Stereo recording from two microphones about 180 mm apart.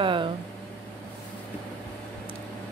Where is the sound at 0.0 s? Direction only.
30° right (ahead or behind).